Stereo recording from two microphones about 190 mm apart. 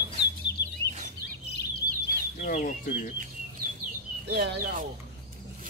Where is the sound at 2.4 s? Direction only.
45° left (ahead or behind).